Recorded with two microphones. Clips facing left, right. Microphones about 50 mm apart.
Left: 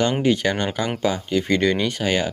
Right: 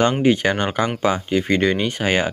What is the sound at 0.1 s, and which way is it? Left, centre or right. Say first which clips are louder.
Speech: right 2 dB; right.